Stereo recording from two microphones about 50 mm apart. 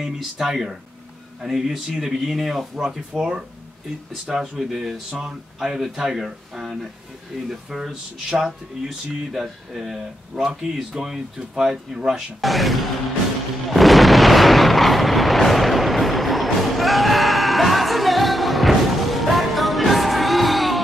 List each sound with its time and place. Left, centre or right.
0.0 s speech: centre
13.7 s artillery fire: centre